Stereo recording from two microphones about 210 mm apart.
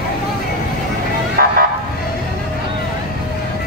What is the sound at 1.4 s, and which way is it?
Vehicle, 45° right (ahead or behind).